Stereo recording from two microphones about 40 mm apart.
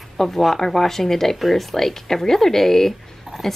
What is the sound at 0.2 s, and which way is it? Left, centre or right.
A woman's voice, centre.